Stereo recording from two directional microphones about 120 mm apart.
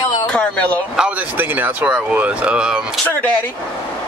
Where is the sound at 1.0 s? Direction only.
15° right (ahead or behind).